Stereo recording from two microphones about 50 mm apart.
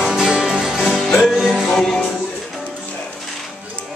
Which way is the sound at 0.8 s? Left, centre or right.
Centre.